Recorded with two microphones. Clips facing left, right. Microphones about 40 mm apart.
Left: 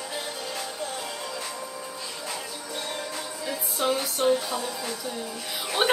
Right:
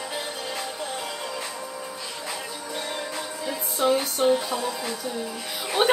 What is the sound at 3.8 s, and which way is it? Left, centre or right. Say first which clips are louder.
Music: right 4 dB; centre.